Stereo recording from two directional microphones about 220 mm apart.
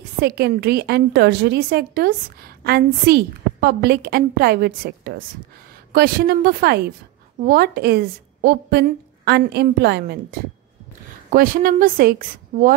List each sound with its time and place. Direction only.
0.2 s a woman's voice: 45° right (ahead or behind)
11.2 s a woman's voice: 40° right (ahead or behind)